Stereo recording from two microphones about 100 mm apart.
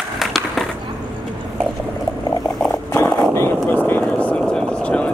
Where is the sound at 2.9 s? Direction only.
25° left (ahead or behind).